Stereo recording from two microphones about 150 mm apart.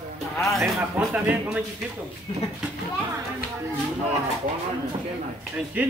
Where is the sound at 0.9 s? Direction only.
10° right (ahead or behind).